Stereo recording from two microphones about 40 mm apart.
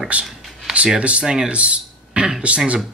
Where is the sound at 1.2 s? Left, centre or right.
Centre.